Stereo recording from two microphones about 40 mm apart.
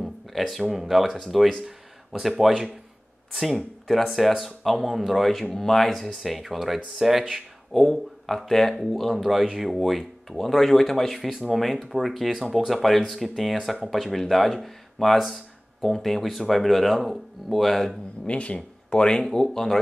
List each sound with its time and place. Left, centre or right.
0.0 s speech: centre
3.8 s speech: centre
7.8 s speech: centre
11.1 s speech: centre
18.2 s speech: left; by 19.8 s centre